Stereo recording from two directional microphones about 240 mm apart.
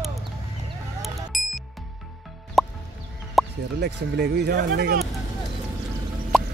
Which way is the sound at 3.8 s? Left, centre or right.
Right.